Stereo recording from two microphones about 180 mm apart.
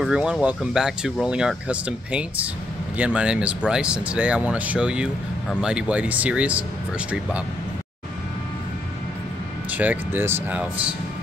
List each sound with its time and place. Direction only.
0.0 s speech: 5° right (ahead or behind)
9.7 s speech: 10° right (ahead or behind)